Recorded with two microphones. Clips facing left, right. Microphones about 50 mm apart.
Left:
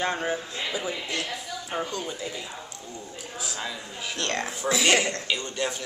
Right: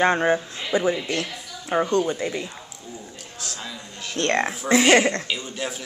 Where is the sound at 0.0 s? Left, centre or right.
Right.